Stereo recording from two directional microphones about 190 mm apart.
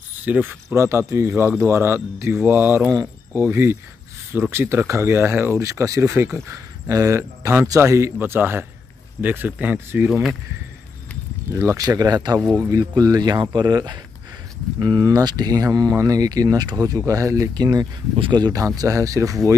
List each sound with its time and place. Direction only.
0.2 s speech: 10° right (ahead or behind)
11.5 s speech: 15° right (ahead or behind)